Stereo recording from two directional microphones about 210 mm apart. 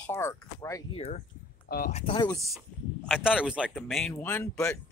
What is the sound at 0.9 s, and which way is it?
Speech, 30° left (ahead or behind).